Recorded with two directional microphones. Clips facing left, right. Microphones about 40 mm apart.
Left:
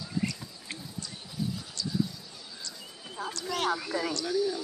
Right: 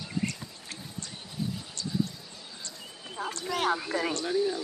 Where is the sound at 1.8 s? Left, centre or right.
Right.